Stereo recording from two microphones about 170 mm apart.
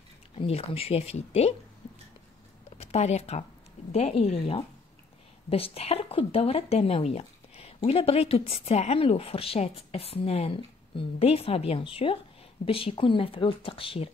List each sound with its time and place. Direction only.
0.4 s speech: 35° left (ahead or behind)
2.8 s speech: 40° left (ahead or behind)